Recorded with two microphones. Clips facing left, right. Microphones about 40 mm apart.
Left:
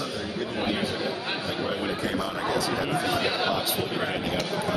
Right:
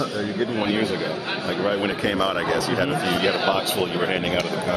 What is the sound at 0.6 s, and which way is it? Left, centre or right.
Speech, centre.